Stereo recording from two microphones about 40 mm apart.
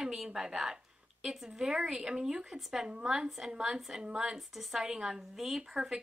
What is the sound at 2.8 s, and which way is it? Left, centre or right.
A woman's voice, centre.